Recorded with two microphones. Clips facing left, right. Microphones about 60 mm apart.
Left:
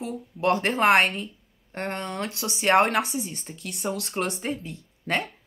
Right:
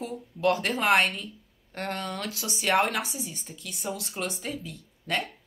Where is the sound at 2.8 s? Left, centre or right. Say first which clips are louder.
Left 5 dB; left.